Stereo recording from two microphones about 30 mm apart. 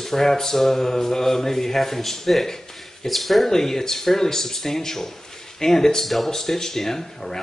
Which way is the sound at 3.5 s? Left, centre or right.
Centre.